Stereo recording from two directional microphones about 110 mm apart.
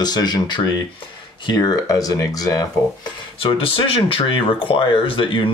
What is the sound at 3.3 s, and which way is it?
Speech, 55° left (ahead or behind).